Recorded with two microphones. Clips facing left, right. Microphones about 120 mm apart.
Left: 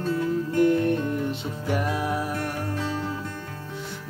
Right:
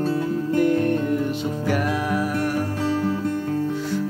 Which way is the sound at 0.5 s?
25° left (ahead or behind).